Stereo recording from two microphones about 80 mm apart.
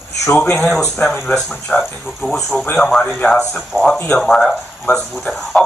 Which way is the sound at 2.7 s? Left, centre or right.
Centre.